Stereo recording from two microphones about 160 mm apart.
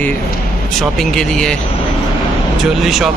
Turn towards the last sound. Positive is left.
turn(degrees=0)  # may be behind; listen again after turning